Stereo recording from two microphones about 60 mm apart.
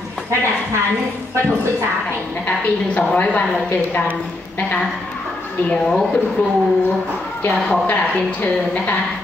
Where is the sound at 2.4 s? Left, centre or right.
Left.